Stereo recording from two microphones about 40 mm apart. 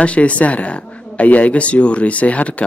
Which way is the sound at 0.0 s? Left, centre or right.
Left.